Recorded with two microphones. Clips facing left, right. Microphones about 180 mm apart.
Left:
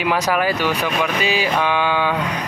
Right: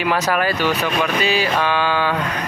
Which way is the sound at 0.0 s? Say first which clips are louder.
Even; 10° left (ahead or behind).